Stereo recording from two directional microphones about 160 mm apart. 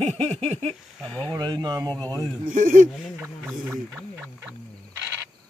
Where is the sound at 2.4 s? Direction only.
55° right (ahead or behind).